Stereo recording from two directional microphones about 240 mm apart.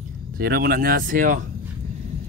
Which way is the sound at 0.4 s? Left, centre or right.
Right.